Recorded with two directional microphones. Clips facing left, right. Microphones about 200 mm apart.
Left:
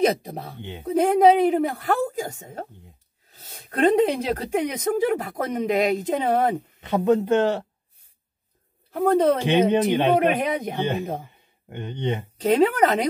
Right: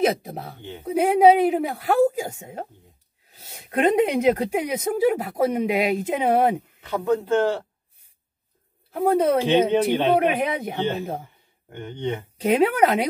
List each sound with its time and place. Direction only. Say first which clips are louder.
0.0 s speech: left 1 dB; 5° right (ahead or behind)
0.6 s speech: left 1 dB; 20° left (ahead or behind)
0.8 s speech: right 1 dB; 10° right (ahead or behind)
6.8 s speech: left 4 dB; 20° left (ahead or behind)
8.9 s speech: even; 10° right (ahead or behind)
9.4 s speech: even; 15° left (ahead or behind)
12.4 s speech: even; 10° right (ahead or behind)